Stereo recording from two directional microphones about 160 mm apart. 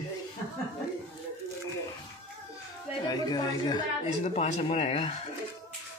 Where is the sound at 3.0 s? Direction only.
25° left (ahead or behind).